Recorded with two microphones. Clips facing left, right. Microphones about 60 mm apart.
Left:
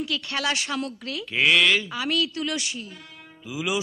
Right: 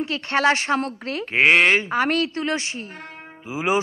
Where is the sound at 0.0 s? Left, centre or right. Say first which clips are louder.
Right 7 dB; right.